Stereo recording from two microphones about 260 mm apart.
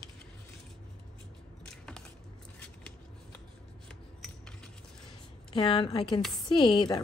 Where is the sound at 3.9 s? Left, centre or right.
Centre.